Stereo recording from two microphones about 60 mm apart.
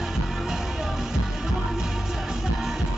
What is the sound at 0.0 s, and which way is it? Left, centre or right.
Music, centre.